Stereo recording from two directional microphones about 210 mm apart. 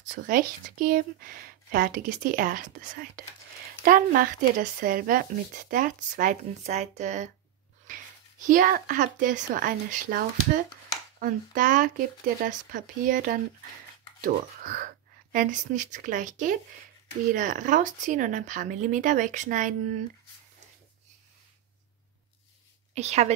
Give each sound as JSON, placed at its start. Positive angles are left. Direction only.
{"t": 0.1, "sound": "speech", "side_deg": -40}
{"t": 22.9, "sound": "speech", "side_deg": -30}